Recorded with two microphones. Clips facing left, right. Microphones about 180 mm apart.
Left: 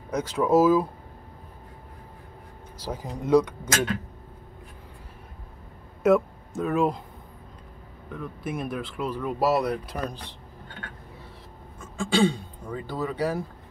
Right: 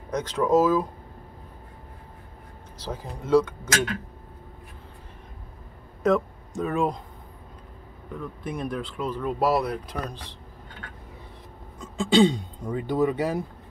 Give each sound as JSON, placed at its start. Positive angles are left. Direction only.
{"t": 0.1, "sound": "speech", "side_deg": 10}
{"t": 2.8, "sound": "speech", "side_deg": 15}
{"t": 6.0, "sound": "speech", "side_deg": 5}
{"t": 8.2, "sound": "speech", "side_deg": 5}
{"t": 11.8, "sound": "speech", "side_deg": -20}